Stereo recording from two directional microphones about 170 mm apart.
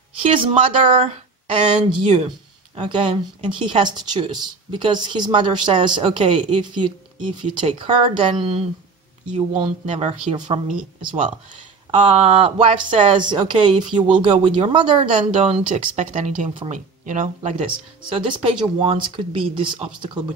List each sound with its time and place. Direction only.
0.4 s speech: 35° right (ahead or behind)
11.9 s speech: 35° right (ahead or behind)
18.1 s speech: 30° right (ahead or behind)